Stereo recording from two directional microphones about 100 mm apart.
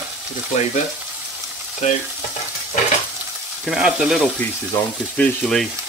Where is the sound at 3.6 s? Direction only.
10° right (ahead or behind).